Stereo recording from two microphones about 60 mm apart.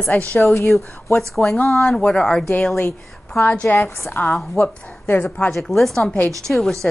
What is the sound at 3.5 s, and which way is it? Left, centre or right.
Speech, left.